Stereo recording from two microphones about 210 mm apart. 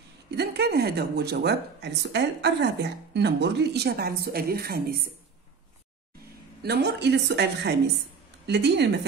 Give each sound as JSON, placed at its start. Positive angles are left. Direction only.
{"t": 0.3, "sound": "speech", "side_deg": -50}
{"t": 6.6, "sound": "speech", "side_deg": -50}